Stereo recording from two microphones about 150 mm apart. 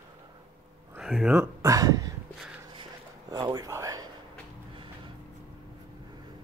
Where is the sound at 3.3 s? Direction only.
25° right (ahead or behind).